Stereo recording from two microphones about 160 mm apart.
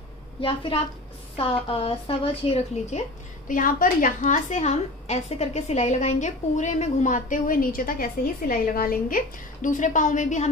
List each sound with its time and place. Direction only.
0.4 s a woman's voice: 35° left (ahead or behind)
3.4 s a woman's voice: 55° left (ahead or behind)